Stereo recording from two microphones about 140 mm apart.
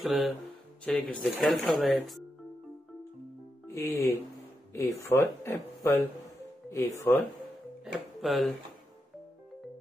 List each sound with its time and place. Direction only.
0.0 s speech: centre (ahead or behind)
3.6 s speech: 20° left (ahead or behind)
7.8 s speech: centre (ahead or behind)